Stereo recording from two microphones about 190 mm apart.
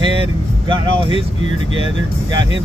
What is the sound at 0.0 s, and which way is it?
Vehicle, 25° right (ahead or behind).